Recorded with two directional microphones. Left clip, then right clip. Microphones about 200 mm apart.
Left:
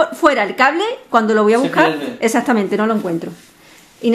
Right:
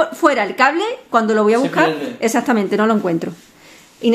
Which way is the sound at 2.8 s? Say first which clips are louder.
Right 2 dB; 20° right (ahead or behind).